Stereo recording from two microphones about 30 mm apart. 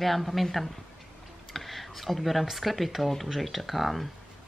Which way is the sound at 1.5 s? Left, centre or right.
Centre.